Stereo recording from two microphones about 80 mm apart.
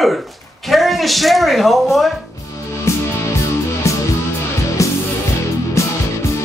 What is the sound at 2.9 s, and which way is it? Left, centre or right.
Music, left.